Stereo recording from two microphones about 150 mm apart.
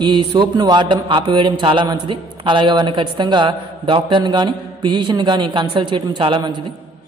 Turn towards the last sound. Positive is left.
turn(degrees=-30)  # may be behind; listen again after turning